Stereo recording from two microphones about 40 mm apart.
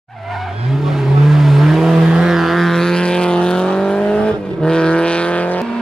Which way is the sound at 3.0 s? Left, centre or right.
Left.